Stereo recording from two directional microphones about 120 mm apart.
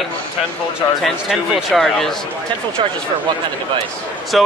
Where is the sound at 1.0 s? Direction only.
Centre (ahead or behind).